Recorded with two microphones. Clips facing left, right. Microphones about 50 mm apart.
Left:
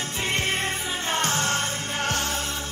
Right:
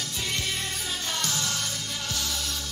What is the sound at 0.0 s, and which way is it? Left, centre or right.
Music, left.